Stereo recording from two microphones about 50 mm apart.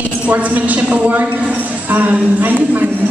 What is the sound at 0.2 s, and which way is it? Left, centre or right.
A woman's voice, right.